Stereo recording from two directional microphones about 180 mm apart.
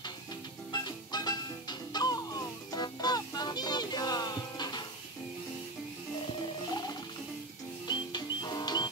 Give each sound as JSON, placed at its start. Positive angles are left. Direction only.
{"t": 0.7, "sound": "music", "side_deg": 25}
{"t": 7.8, "sound": "music", "side_deg": 25}